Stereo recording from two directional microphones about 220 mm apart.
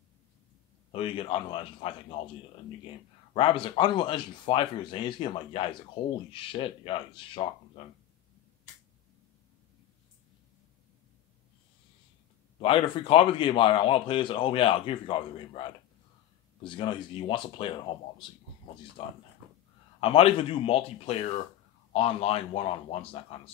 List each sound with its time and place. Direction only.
0.9 s a man's voice: 25° left (ahead or behind)
3.3 s a man's voice: 25° left (ahead or behind)
12.5 s a man's voice: 25° left (ahead or behind)
19.0 s a man's voice: 25° left (ahead or behind)